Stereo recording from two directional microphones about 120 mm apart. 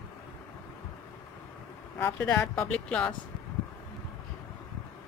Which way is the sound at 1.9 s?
20° left (ahead or behind).